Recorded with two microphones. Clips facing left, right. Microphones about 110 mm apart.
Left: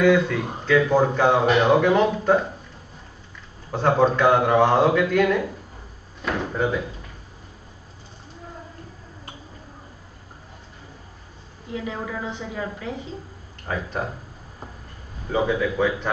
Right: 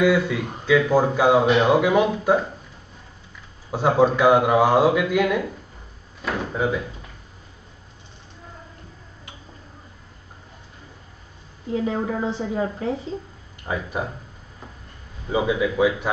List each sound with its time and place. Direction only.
0.0 s speech: 10° right (ahead or behind)
3.7 s speech: 10° right (ahead or behind)
11.7 s a woman's voice: 35° right (ahead or behind)
13.7 s speech: 10° right (ahead or behind)
15.2 s speech: 10° right (ahead or behind)